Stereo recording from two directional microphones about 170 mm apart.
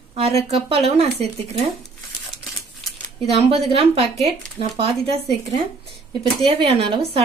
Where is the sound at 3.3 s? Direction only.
35° right (ahead or behind).